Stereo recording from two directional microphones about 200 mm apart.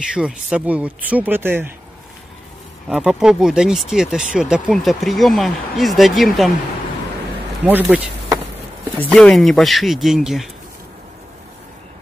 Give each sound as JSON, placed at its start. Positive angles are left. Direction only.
{"t": 0.1, "sound": "speech", "side_deg": -5}
{"t": 2.9, "sound": "speech", "side_deg": -5}
{"t": 7.6, "sound": "speech", "side_deg": -10}
{"t": 9.1, "sound": "speech", "side_deg": 0}